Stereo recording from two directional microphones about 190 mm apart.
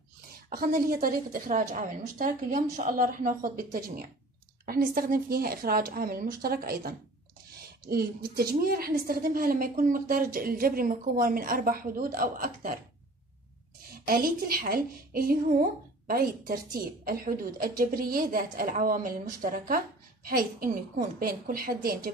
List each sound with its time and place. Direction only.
0.5 s a woman's voice: 50° right (ahead or behind)
14.0 s a woman's voice: 50° right (ahead or behind)